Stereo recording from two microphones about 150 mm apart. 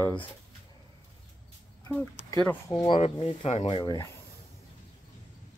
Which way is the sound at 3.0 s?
45° left (ahead or behind).